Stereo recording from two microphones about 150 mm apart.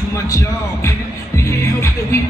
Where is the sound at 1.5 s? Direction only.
20° left (ahead or behind).